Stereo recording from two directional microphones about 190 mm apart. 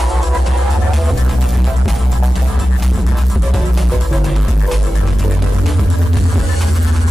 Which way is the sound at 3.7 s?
Centre (ahead or behind).